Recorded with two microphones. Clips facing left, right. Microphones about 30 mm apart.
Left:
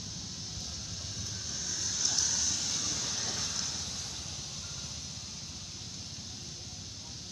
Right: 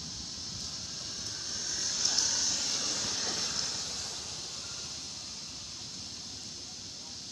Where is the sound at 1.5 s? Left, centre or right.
Centre.